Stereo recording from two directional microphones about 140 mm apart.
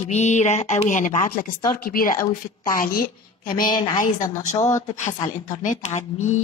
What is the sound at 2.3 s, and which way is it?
A woman's voice, 80° left.